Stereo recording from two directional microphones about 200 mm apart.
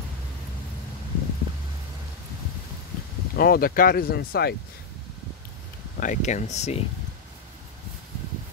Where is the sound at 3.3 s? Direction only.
50° left (ahead or behind).